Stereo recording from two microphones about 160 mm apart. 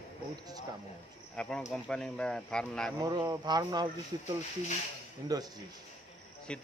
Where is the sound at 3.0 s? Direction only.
25° right (ahead or behind).